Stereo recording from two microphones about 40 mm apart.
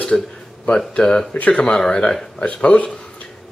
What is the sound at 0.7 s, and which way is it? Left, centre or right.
Mantra, centre.